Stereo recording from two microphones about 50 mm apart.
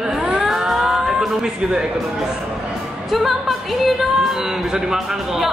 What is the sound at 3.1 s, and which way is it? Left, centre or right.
Music, centre.